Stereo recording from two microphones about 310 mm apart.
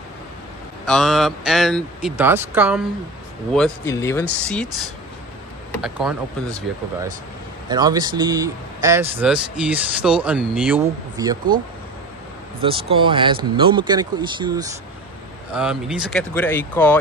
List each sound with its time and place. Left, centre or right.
0.8 s speech: centre
3.5 s speech: centre
7.7 s speech: centre
12.6 s speech: centre
15.5 s speech: centre